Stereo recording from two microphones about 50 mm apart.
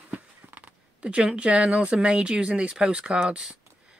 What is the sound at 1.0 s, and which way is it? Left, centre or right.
Speech, right.